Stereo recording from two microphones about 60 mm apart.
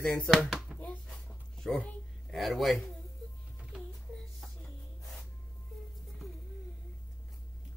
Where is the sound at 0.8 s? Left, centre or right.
Centre.